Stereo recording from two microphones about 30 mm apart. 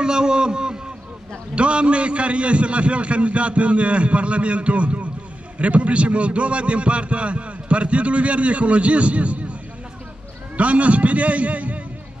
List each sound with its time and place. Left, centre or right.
0.0 s a man's voice: right
1.5 s a man's voice: right
10.6 s a man's voice: right